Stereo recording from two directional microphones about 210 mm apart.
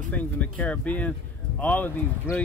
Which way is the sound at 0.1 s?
5° left (ahead or behind).